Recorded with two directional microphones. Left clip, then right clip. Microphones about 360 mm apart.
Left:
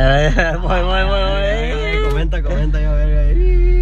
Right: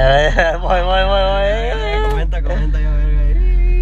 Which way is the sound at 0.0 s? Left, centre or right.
Right.